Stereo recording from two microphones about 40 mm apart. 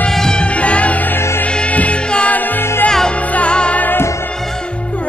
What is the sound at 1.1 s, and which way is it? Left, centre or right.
Music, left.